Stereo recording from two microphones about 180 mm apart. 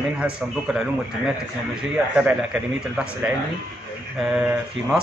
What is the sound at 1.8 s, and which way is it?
A man's voice, 5° right (ahead or behind).